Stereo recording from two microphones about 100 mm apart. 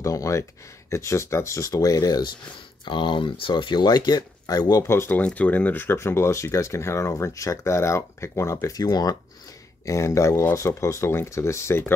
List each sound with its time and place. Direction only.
0.0 s speech: 35° left (ahead or behind)
2.8 s speech: 50° left (ahead or behind)
4.8 s speech: 25° left (ahead or behind)